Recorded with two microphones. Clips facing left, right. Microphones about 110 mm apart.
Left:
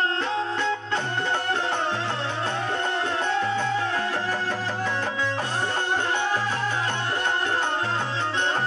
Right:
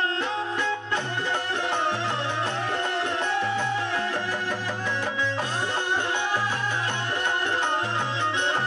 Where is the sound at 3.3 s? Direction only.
15° right (ahead or behind).